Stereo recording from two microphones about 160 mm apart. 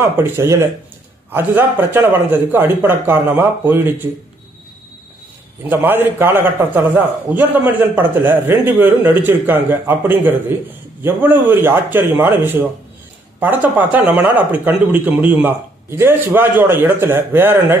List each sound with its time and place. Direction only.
0.2 s speech: 15° right (ahead or behind)
5.6 s speech: 15° right (ahead or behind)